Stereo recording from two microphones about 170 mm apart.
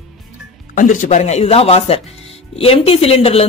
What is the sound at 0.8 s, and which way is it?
Speech, 50° left (ahead or behind).